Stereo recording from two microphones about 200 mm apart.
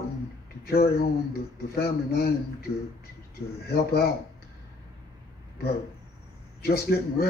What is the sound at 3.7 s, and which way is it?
Speech, 50° left (ahead or behind).